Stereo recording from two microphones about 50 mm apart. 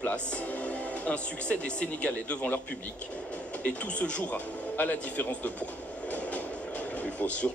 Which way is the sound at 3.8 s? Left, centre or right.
Left.